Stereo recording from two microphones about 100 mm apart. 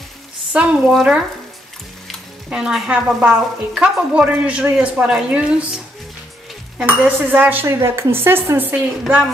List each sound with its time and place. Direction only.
0.5 s speech: 10° right (ahead or behind)
2.0 s speech: 5° right (ahead or behind)
6.9 s speech: 20° right (ahead or behind)
9.0 s a woman's voice: centre (ahead or behind)